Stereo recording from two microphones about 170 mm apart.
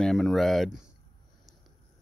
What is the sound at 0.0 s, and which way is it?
Speech, centre (ahead or behind).